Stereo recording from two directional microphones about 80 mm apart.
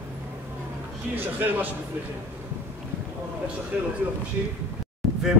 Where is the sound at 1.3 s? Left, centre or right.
Right.